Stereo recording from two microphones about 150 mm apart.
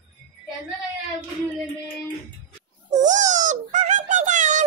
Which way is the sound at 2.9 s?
55° right (ahead or behind).